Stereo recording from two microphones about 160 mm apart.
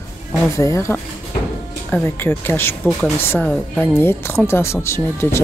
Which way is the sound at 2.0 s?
15° left (ahead or behind).